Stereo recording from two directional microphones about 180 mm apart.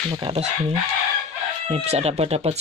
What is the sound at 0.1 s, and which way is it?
Speech, 30° right (ahead or behind).